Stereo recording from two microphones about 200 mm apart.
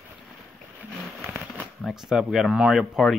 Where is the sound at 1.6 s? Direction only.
Centre (ahead or behind).